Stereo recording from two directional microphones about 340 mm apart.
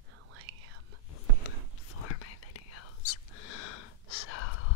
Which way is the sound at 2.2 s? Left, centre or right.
Left.